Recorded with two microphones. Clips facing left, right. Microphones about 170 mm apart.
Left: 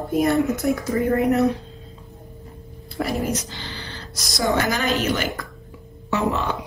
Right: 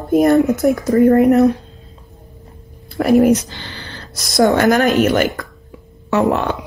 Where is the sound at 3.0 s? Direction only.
65° right (ahead or behind).